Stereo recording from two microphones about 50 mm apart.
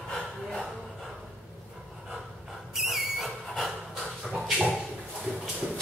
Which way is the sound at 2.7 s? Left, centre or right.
Centre.